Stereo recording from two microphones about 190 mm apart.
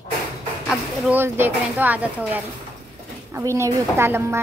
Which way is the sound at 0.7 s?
Centre (ahead or behind).